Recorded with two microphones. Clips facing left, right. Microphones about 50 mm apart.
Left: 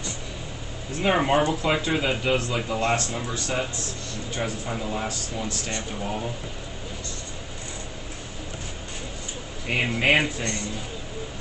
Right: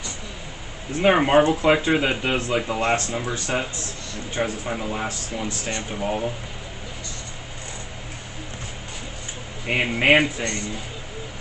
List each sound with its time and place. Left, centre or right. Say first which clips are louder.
1.0 s speech: right 5 dB; right
9.7 s speech: right 4 dB; right